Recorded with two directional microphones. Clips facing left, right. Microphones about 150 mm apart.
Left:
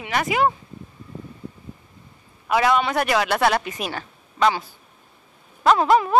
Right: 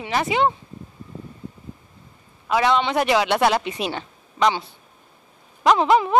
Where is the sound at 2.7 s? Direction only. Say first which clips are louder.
Right 1 dB; 20° right (ahead or behind).